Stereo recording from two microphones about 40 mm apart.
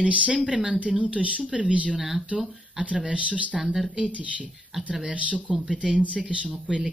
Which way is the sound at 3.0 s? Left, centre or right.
Right.